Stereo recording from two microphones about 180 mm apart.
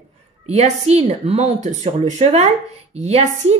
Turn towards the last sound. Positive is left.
turn(degrees=-35)  # may be behind; listen again after turning